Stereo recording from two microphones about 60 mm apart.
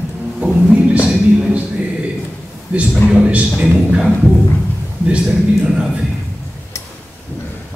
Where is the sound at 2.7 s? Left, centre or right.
Right.